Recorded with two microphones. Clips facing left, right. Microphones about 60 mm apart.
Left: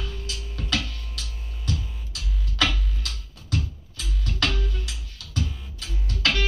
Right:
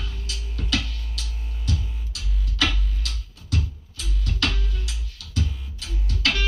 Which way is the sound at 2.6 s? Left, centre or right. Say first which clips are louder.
Even; left.